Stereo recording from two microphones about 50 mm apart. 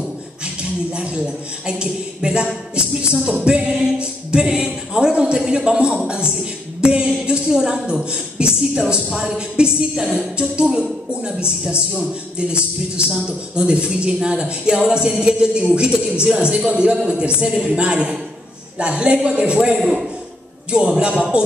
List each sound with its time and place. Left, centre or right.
0.9 s a man's voice: centre